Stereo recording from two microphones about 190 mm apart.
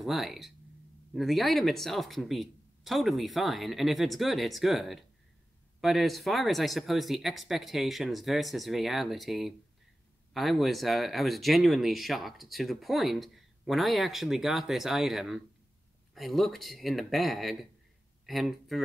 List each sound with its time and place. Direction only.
0.0 s speech: centre (ahead or behind)